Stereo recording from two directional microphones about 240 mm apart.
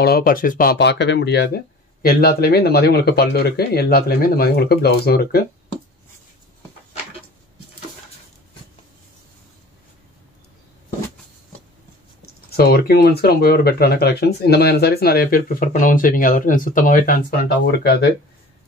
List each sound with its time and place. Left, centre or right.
0.0 s speech: left
12.4 s speech: left